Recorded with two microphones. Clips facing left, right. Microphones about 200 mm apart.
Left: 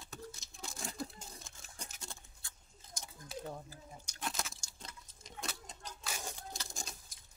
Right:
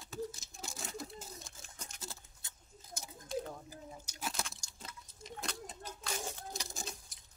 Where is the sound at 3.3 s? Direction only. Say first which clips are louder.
Right 8 dB; 5° left (ahead or behind).